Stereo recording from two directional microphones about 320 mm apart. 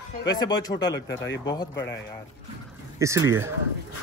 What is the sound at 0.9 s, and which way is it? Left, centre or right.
Speech, left.